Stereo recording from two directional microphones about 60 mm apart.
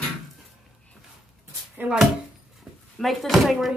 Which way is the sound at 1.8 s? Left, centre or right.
Right.